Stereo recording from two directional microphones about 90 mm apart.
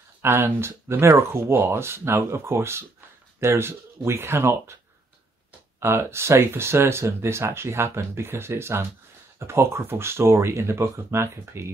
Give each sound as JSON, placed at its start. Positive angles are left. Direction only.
{"t": 0.2, "sound": "speech", "side_deg": -30}
{"t": 5.8, "sound": "speech", "side_deg": -30}